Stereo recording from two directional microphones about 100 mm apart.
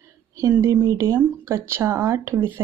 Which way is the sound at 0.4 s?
30° right (ahead or behind).